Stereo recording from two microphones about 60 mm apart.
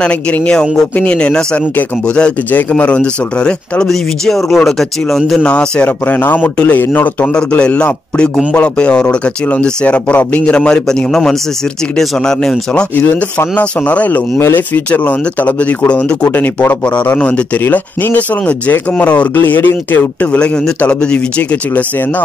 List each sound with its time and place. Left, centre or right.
0.0 s speech: centre
5.4 s speech: centre
5.9 s speech: left
7.3 s speech: centre
13.6 s speech: left
20.3 s speech: centre